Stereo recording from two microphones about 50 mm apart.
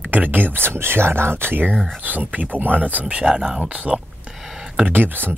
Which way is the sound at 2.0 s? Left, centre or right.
Right.